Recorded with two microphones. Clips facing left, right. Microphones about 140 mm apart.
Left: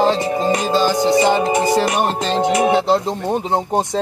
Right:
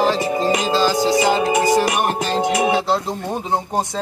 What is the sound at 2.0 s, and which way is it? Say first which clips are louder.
Speech: left 2 dB; 25° left (ahead or behind).